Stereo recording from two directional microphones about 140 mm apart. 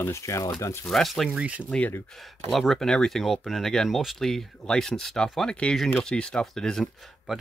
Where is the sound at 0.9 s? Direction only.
Centre (ahead or behind).